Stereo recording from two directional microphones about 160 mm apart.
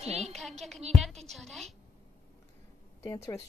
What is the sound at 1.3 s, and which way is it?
Speech, centre (ahead or behind).